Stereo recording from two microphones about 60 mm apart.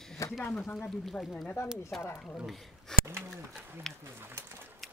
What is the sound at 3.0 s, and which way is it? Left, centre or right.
Pigeon, right.